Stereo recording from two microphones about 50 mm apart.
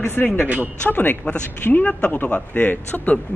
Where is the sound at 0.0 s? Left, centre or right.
Left.